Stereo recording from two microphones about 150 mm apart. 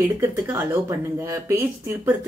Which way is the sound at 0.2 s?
20° right (ahead or behind).